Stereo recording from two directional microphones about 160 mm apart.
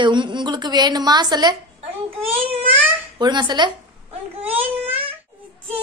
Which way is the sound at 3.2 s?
30° right (ahead or behind).